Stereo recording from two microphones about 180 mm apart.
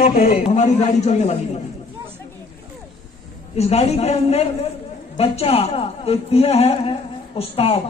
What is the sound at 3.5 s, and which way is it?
A woman's voice, 35° left (ahead or behind).